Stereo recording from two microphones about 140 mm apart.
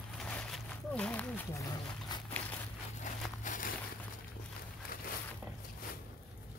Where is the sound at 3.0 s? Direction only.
70° left (ahead or behind).